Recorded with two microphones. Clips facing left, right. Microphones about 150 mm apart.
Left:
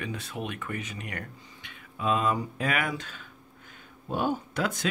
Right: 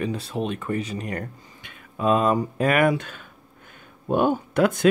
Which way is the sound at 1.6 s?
45° right (ahead or behind).